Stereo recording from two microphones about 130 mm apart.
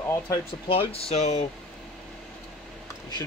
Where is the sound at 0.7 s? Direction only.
45° left (ahead or behind).